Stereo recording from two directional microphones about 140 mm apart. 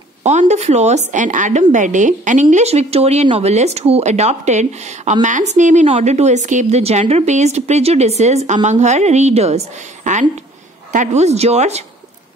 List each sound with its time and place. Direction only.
0.2 s a woman's voice: 55° right (ahead or behind)
2.5 s a woman's voice: 50° right (ahead or behind)
10.1 s a woman's voice: 60° right (ahead or behind)